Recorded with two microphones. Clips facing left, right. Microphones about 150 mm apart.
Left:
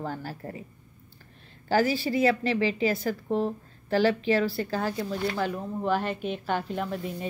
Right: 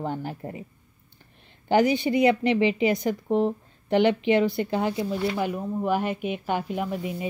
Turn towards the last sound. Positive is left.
turn(degrees=-10)  # may be behind; listen again after turning